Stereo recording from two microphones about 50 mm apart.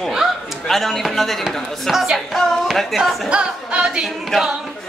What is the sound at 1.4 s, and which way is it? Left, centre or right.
A woman's voice, centre.